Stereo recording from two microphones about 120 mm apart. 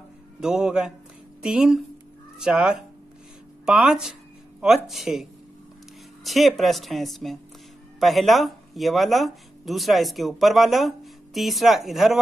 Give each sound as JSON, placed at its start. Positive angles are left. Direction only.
{"t": 0.4, "sound": "speech", "side_deg": -5}
{"t": 3.6, "sound": "a sound", "side_deg": -5}
{"t": 4.8, "sound": "speech", "side_deg": 0}